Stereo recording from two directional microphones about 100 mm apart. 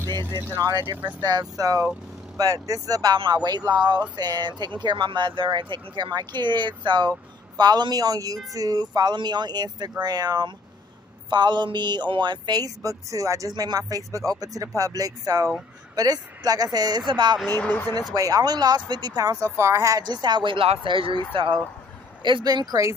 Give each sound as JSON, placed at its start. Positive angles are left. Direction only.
{"t": 0.0, "sound": "speech", "side_deg": 30}
{"t": 0.6, "sound": "a man's voice", "side_deg": -40}
{"t": 17.5, "sound": "speech", "side_deg": 20}
{"t": 17.9, "sound": "a man's voice", "side_deg": -40}
{"t": 20.0, "sound": "speech", "side_deg": -45}
{"t": 20.5, "sound": "speech", "side_deg": -75}